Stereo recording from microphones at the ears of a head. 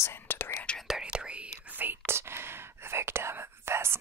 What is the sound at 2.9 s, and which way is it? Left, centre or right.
Whispering, right.